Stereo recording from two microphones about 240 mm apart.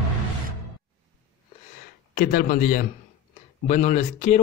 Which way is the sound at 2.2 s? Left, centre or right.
Left.